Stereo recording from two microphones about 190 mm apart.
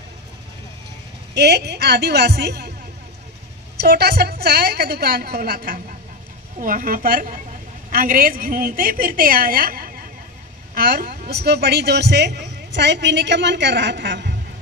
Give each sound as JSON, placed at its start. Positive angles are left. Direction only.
{"t": 1.3, "sound": "a woman's voice", "side_deg": -60}
{"t": 3.7, "sound": "a woman's voice", "side_deg": -55}